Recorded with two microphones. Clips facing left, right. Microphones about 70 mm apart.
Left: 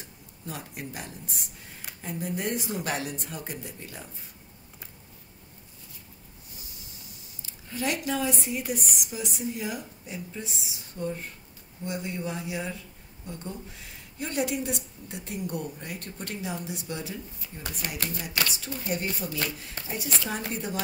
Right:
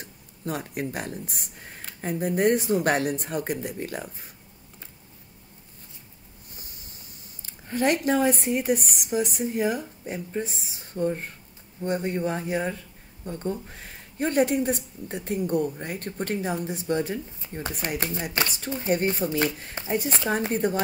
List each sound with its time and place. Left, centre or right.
0.0 s speech: right
7.4 s a woman's voice: right
20.2 s a woman's voice: right